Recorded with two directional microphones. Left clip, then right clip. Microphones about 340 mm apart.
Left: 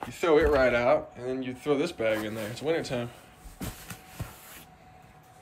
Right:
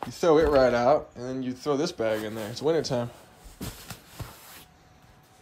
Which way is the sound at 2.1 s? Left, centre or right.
Right.